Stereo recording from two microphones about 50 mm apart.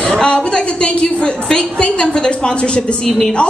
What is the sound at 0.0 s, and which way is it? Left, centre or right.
A woman's voice, centre.